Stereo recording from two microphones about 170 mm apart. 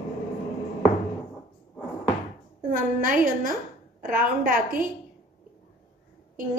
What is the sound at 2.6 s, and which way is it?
A woman's voice, 50° right (ahead or behind).